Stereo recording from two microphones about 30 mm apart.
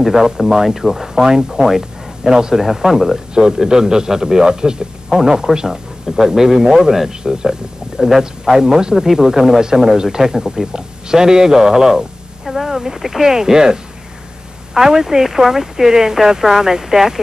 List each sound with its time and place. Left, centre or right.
0.0 s speech: centre
3.3 s a man's voice: right
8.9 s a man's voice: centre